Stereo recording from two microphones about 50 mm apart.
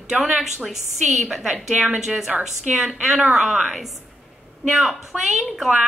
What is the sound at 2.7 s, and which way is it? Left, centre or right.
A woman's voice, centre.